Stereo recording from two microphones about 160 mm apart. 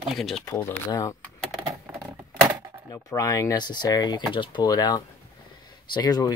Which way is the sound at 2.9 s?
20° left (ahead or behind).